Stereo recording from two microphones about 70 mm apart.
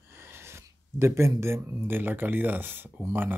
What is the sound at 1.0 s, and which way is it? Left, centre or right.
Speech, right.